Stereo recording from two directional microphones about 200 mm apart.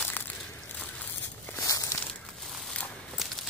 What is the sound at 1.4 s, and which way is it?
Walk, 15° left (ahead or behind).